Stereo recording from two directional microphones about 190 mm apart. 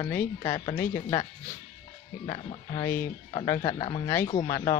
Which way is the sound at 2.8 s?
10° left (ahead or behind).